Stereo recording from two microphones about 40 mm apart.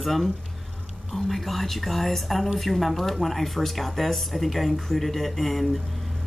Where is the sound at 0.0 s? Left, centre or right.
Centre.